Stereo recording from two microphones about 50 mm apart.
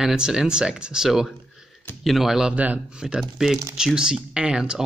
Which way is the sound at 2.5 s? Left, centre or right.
Right.